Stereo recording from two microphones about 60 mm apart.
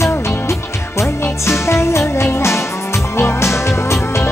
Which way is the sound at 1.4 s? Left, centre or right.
Left.